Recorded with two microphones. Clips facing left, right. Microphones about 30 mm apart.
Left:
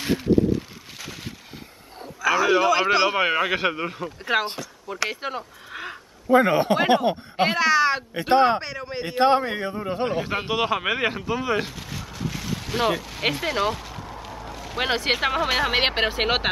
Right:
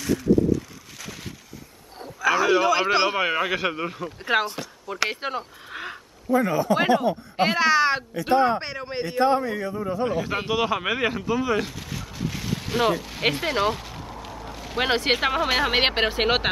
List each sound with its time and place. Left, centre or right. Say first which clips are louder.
0.0 s a sound: even; left
2.2 s a sound: even; centre
3.2 s speech: left 2 dB; centre
4.9 s speech: right 1 dB; centre
5.2 s speech: right 1 dB; centre
6.3 s speech: left 4 dB; left
7.5 s speech: even; centre
8.1 s a man's voice: left 2 dB; left
8.5 s speech: even; centre
9.0 s a man's voice: left 2 dB; left
10.3 s speech: even; centre
12.2 s a sound: right 1 dB; centre
14.4 s speech: right 1 dB; centre